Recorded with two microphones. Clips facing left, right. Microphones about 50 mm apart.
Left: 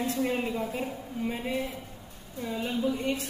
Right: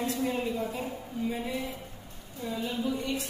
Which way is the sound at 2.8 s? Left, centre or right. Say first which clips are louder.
Left 3 dB; left.